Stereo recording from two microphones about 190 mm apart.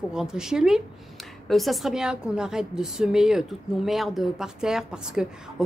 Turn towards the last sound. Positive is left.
turn(degrees=0)  # may be behind; listen again after turning